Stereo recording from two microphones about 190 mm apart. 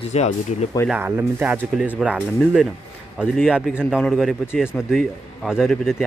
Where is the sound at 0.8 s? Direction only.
10° right (ahead or behind).